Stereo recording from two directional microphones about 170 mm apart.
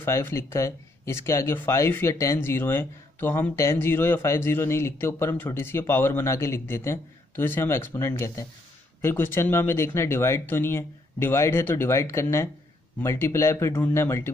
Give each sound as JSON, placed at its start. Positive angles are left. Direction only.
{"t": 0.0, "sound": "speech", "side_deg": 15}